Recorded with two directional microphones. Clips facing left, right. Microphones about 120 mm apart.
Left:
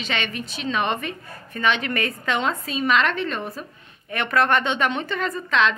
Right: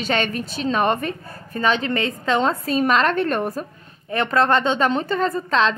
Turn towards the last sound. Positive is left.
turn(degrees=-35)  # may be behind; listen again after turning